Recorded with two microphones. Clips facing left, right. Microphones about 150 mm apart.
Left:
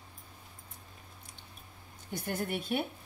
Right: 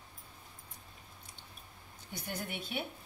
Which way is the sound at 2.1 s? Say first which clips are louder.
Left 6 dB; 50° left (ahead or behind).